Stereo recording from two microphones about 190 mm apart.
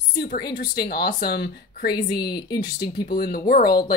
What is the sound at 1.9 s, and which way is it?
Speech, 20° left (ahead or behind).